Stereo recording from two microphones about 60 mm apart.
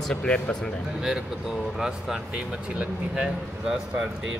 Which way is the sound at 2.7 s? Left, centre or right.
Right.